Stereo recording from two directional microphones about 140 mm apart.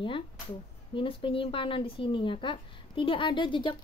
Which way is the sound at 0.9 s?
40° left (ahead or behind).